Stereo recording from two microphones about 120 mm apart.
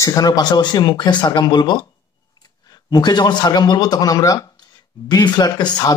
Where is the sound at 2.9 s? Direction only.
35° left (ahead or behind).